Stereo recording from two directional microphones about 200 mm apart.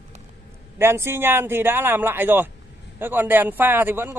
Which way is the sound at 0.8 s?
10° right (ahead or behind).